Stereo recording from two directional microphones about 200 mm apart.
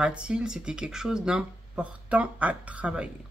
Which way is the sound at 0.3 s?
5° right (ahead or behind).